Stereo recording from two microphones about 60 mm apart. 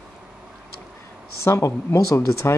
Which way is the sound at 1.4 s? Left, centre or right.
Left.